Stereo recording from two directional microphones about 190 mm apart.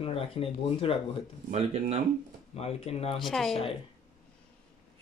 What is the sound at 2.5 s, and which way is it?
Speech, 35° left (ahead or behind).